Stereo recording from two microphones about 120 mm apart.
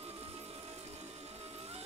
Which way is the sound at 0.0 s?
60° right (ahead or behind).